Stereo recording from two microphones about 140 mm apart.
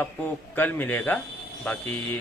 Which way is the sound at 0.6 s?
10° left (ahead or behind).